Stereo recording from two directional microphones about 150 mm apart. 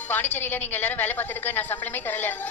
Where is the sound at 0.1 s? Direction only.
15° left (ahead or behind).